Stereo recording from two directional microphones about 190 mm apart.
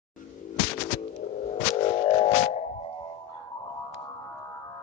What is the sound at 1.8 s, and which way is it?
Music, 30° left (ahead or behind).